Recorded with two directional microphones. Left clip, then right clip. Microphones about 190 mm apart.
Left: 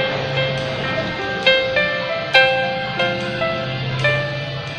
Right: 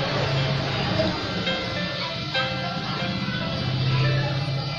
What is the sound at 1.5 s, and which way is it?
Music, 45° left (ahead or behind).